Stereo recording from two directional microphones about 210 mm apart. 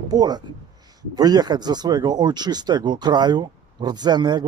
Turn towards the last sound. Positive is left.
turn(degrees=-20)  # may be behind; listen again after turning